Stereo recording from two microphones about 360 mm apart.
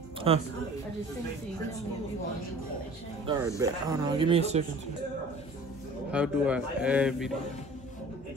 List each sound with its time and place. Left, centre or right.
0.3 s speech: centre
3.3 s speech: centre
6.1 s speech: centre